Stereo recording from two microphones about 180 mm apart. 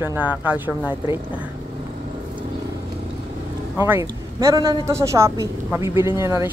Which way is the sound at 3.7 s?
10° right (ahead or behind).